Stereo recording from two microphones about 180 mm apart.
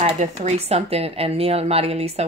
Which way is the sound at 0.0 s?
40° right (ahead or behind).